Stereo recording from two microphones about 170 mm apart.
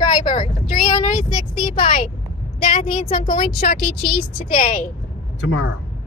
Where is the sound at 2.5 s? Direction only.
55° left (ahead or behind).